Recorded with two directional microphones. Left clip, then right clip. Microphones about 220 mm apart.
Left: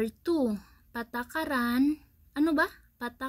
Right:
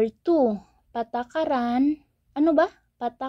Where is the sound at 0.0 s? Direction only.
25° left (ahead or behind).